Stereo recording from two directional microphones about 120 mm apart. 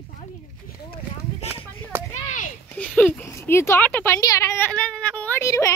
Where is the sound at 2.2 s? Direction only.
90° left.